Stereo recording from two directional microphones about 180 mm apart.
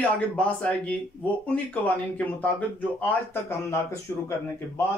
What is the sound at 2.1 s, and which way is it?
Speech, 10° left (ahead or behind).